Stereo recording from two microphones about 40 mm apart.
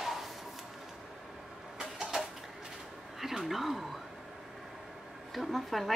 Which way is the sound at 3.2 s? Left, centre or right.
Centre.